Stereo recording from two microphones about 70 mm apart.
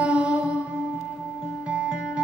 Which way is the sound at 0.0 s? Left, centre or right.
Centre.